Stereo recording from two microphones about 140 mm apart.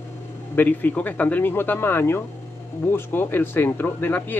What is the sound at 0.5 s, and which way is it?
Speech, 15° left (ahead or behind).